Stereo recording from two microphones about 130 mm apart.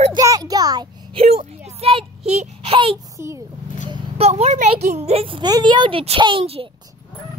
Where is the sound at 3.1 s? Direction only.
20° right (ahead or behind).